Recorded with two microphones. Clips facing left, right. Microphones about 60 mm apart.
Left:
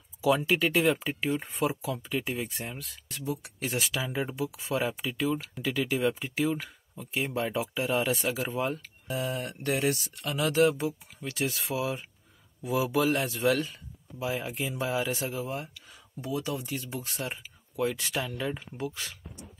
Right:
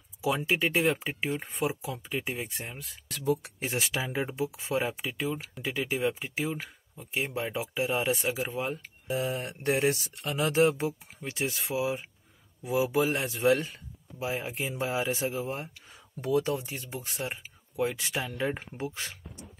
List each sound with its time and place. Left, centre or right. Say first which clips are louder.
0.2 s speech: left 3 dB; centre
1.6 s speech: left 2 dB; centre
3.4 s speech: even; right
4.9 s speech: left 3 dB; centre
9.1 s speech: right 1 dB; right
11.1 s speech: left 1 dB; right
13.4 s speech: right 2 dB; right
16.2 s speech: right 5 dB; right
16.6 s speech: left 3 dB; right
18.4 s speech: right 2 dB; right
18.8 s speech: even; right